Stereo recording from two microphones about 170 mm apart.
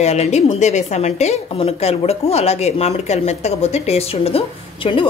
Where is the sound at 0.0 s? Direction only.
40° left (ahead or behind).